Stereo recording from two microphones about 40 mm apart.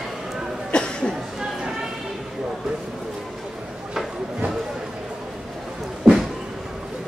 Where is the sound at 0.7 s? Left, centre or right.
Left.